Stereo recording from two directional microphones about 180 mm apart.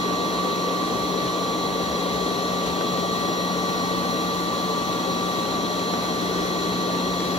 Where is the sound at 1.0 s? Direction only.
35° left (ahead or behind).